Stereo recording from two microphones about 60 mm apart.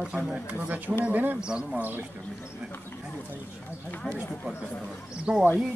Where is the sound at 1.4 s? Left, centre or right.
Centre.